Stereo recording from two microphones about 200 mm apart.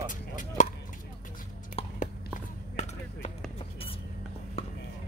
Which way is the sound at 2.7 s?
35° left (ahead or behind).